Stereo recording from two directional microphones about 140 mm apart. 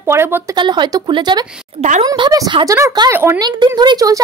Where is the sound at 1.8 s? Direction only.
55° right (ahead or behind).